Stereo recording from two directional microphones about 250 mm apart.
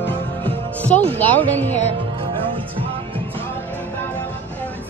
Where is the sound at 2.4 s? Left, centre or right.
Right.